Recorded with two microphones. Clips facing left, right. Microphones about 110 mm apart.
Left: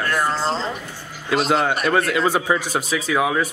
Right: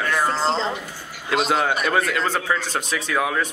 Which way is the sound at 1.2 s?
Centre (ahead or behind).